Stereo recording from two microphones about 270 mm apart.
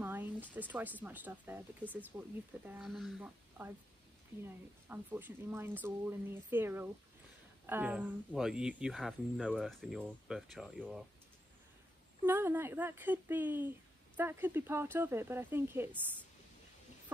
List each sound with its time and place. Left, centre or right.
0.0 s speech: centre
4.8 s speech: centre
12.2 s speech: centre